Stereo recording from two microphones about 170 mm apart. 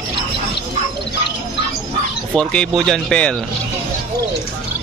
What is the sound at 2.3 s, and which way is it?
Speech, 5° left (ahead or behind).